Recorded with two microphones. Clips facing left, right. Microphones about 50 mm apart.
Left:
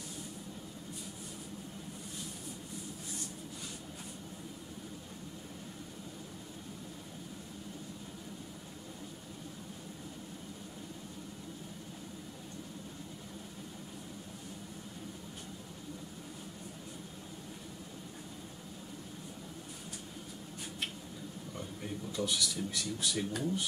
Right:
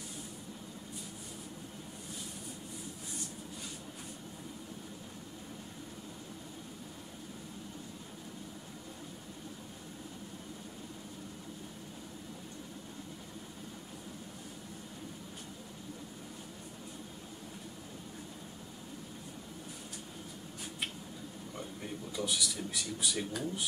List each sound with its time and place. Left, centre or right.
22.1 s speech: centre